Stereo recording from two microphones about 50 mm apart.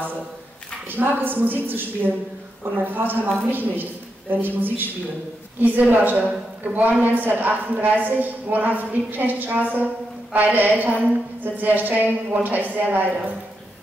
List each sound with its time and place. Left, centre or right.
0.8 s a woman's voice: right
5.8 s a woman's voice: right